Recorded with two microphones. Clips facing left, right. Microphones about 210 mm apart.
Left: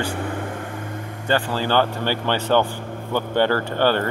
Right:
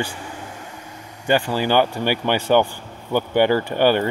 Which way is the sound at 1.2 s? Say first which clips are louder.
Right 3 dB; 15° right (ahead or behind).